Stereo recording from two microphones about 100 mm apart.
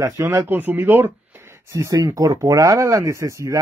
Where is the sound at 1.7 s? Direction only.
35° right (ahead or behind).